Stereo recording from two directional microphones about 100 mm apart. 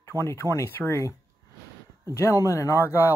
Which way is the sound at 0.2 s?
30° left (ahead or behind).